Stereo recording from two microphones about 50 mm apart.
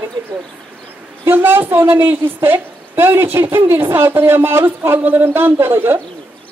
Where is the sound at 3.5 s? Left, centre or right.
Right.